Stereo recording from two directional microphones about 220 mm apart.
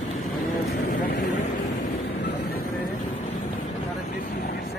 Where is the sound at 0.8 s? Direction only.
45° left (ahead or behind).